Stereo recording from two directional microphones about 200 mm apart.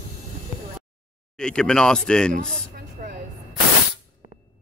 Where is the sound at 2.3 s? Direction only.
40° right (ahead or behind).